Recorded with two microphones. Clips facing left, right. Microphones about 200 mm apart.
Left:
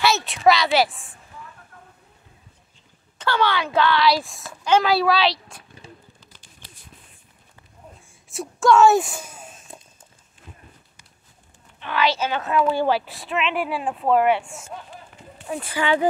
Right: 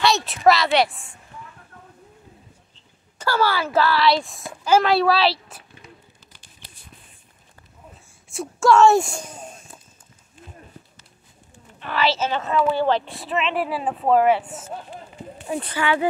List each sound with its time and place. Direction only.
0.0 s speech: centre (ahead or behind)
3.2 s speech: 5° right (ahead or behind)
8.3 s speech: centre (ahead or behind)
11.8 s speech: 5° right (ahead or behind)
15.4 s speech: centre (ahead or behind)
15.7 s speech: 20° left (ahead or behind)